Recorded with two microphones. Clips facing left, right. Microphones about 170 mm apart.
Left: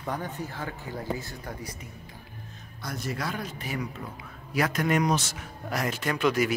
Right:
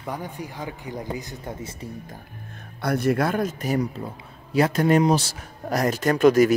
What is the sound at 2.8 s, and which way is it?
Speech, 60° right (ahead or behind).